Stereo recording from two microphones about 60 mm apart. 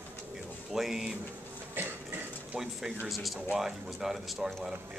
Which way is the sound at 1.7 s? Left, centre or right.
Right.